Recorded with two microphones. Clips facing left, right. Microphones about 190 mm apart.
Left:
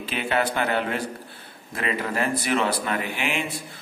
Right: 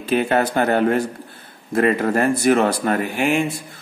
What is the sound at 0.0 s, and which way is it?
Speech, 45° right (ahead or behind).